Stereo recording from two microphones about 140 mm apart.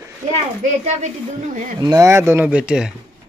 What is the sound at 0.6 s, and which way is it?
Speech, 55° right (ahead or behind).